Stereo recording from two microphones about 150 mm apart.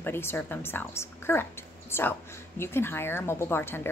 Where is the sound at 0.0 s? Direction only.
15° left (ahead or behind).